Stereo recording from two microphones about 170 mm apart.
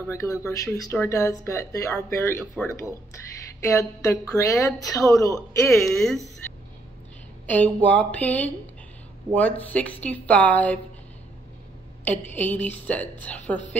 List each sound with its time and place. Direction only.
0.0 s a woman's voice: 15° left (ahead or behind)
5.8 s speech: centre (ahead or behind)
7.4 s a woman's voice: 10° left (ahead or behind)
12.0 s a woman's voice: 10° left (ahead or behind)